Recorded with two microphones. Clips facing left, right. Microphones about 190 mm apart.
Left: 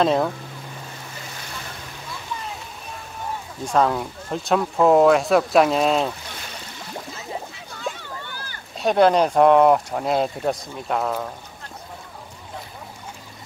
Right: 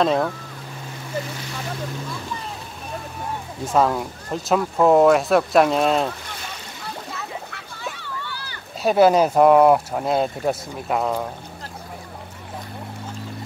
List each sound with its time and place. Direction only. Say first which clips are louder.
0.0 s speech: even; centre (ahead or behind)
3.6 s speech: right 1 dB; 5° right (ahead or behind)
7.9 s a sound: right 2 dB; 50° left (ahead or behind)
8.8 s speech: right 1 dB; 5° right (ahead or behind)